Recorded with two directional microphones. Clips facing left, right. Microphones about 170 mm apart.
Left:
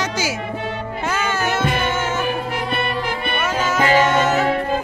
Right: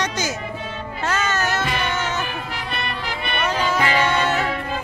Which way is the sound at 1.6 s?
50° left (ahead or behind).